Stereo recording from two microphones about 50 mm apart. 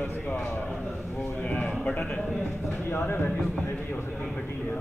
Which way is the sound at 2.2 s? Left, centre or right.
Centre.